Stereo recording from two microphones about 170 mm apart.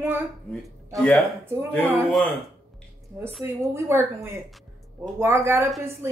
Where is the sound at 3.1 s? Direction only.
10° right (ahead or behind).